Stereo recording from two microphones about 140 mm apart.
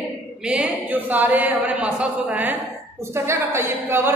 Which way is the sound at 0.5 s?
10° right (ahead or behind).